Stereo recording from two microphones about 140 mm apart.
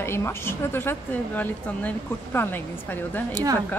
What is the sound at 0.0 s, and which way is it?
A woman's voice, 15° left (ahead or behind).